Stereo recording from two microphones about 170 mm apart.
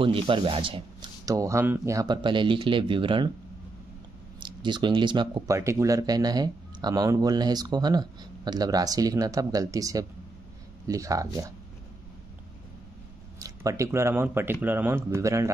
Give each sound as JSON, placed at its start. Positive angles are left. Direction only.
{"t": 0.0, "sound": "speech", "side_deg": -30}
{"t": 1.2, "sound": "speech", "side_deg": -20}
{"t": 4.4, "sound": "speech", "side_deg": -30}
{"t": 5.6, "sound": "speech", "side_deg": -15}
{"t": 13.4, "sound": "speech", "side_deg": -20}